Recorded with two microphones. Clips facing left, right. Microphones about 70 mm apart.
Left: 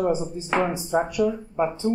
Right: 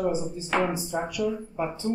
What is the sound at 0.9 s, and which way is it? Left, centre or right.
Speech, left.